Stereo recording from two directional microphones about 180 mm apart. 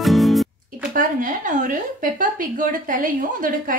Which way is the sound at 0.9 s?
50° right (ahead or behind).